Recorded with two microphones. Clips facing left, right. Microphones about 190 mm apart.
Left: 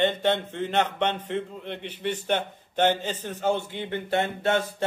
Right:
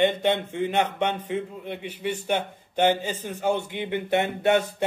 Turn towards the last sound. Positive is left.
turn(degrees=-15)  # may be behind; listen again after turning